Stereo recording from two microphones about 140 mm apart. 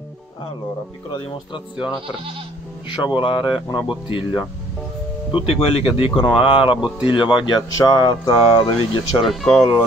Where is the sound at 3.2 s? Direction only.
35° left (ahead or behind).